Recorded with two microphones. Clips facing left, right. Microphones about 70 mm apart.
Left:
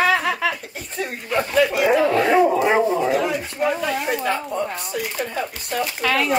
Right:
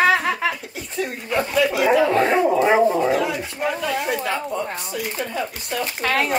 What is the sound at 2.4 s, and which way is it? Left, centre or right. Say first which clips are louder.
Dog: even; centre.